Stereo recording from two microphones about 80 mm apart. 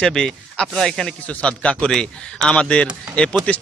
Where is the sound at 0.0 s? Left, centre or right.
Centre.